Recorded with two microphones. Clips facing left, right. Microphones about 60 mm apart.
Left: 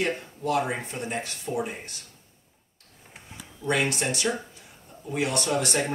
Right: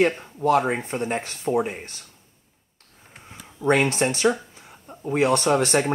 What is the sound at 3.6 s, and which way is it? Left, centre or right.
Speech, right.